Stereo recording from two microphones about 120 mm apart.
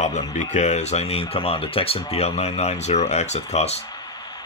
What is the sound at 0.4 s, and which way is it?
Speech, 80° left.